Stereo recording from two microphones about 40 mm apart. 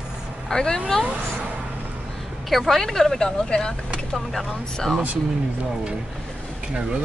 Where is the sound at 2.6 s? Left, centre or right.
Centre.